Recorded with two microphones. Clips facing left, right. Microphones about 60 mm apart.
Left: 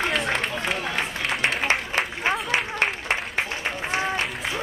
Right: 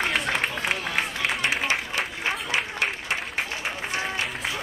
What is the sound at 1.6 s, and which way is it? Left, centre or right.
Applause, left.